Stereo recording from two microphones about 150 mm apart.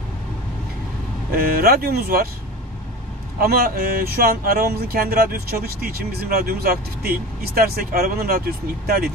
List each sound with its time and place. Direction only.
1.3 s speech: 85° right
3.3 s speech: 80° right